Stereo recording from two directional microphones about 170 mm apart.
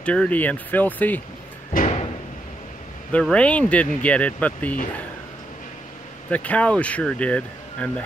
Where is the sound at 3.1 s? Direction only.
5° left (ahead or behind).